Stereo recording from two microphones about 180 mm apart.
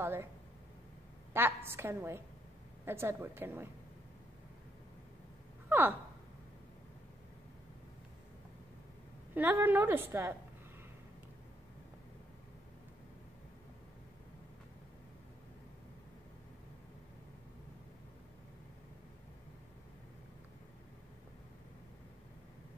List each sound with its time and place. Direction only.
0.0 s speech: 15° right (ahead or behind)
1.3 s a woman's voice: 15° right (ahead or behind)
5.7 s gasp: 10° right (ahead or behind)
9.3 s a woman's voice: 10° right (ahead or behind)